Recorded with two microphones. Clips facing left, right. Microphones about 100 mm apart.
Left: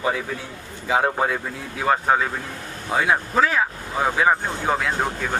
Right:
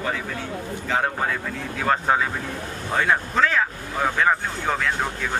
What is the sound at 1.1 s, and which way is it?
A man's voice, 15° left (ahead or behind).